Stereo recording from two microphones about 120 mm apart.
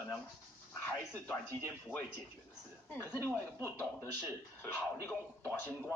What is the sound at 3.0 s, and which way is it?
A man's voice, 15° left (ahead or behind).